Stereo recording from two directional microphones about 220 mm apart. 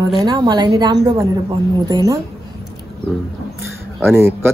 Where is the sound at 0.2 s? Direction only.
20° right (ahead or behind).